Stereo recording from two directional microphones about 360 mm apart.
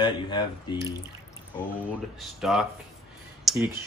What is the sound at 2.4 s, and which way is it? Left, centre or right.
Speech, centre.